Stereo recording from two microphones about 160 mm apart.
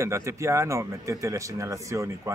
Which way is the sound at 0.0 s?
20° right (ahead or behind).